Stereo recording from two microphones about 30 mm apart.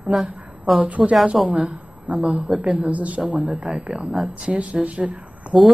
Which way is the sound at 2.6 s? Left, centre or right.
Right.